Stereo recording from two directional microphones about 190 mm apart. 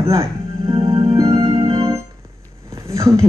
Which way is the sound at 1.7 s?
15° right (ahead or behind).